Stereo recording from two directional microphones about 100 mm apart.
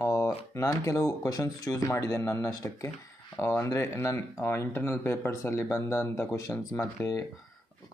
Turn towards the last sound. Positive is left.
turn(degrees=30)  # may be behind; listen again after turning